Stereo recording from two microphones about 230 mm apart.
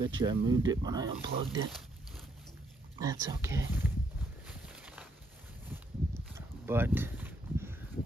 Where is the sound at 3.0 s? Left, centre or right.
Centre.